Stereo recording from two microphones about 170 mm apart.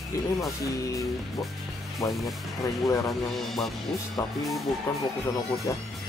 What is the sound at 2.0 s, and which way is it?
Speech, 20° left (ahead or behind).